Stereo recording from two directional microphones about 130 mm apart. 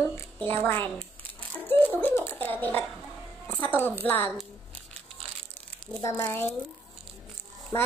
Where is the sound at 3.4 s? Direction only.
15° left (ahead or behind).